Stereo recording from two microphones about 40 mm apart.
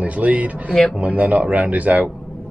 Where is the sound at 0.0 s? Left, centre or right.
Right.